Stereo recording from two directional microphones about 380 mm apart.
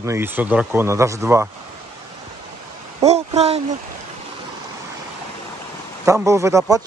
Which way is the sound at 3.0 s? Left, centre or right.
Centre.